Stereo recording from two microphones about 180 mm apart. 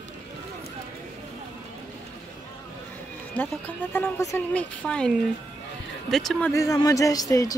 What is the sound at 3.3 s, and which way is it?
Speech, 10° left (ahead or behind).